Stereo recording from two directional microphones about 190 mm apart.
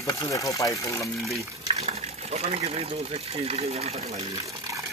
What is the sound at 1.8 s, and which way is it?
Speech, 35° right (ahead or behind).